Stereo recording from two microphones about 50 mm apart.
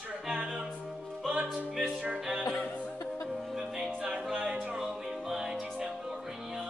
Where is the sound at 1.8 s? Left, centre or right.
Centre.